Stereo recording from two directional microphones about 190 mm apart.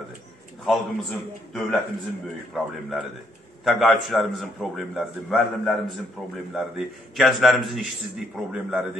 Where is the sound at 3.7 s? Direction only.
Centre (ahead or behind).